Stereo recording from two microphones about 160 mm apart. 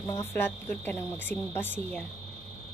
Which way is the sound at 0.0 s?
15° left (ahead or behind).